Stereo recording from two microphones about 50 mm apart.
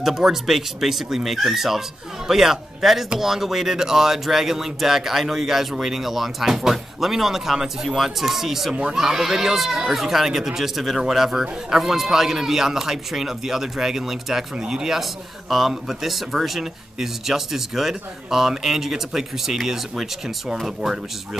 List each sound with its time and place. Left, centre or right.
0.0 s speech: centre